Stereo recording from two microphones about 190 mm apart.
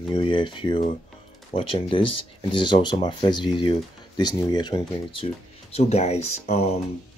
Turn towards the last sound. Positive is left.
turn(degrees=35)  # may be behind; listen again after turning